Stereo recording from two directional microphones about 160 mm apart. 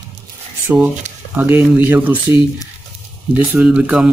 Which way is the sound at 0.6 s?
10° right (ahead or behind).